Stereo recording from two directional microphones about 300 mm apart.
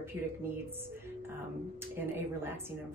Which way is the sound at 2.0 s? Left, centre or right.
Centre.